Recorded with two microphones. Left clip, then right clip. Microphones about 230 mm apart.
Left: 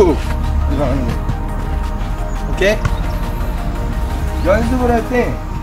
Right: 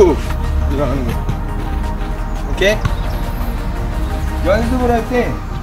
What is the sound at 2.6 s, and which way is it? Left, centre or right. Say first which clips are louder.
Speech: even; centre.